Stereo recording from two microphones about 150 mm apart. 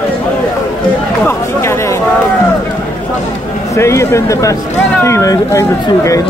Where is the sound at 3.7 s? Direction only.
20° left (ahead or behind).